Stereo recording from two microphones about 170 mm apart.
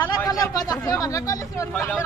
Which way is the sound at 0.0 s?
20° left (ahead or behind).